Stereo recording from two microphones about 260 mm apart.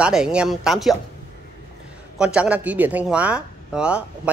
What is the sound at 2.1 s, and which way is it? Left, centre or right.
Speech, centre.